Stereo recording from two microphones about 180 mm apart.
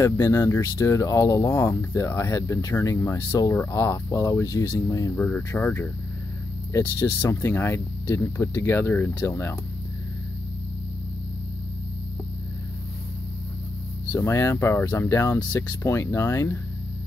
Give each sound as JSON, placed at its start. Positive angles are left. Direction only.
{"t": 0.0, "sound": "speech", "side_deg": 15}
{"t": 14.1, "sound": "speech", "side_deg": 15}